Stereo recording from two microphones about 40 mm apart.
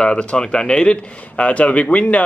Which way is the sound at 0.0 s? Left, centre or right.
Left.